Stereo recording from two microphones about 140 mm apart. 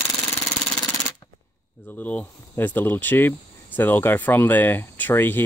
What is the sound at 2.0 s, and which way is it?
Speech, 10° left (ahead or behind).